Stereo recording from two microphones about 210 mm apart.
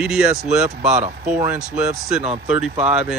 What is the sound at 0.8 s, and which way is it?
Speech, 35° right (ahead or behind).